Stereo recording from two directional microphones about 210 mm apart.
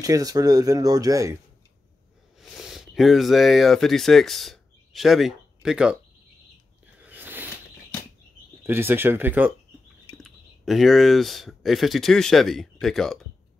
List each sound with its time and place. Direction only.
0.0 s speech: 15° right (ahead or behind)
2.4 s speech: centre (ahead or behind)
7.0 s biting: 10° right (ahead or behind)
8.6 s speech: 10° right (ahead or behind)